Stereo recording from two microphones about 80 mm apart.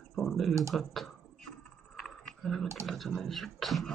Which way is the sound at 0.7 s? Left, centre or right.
Centre.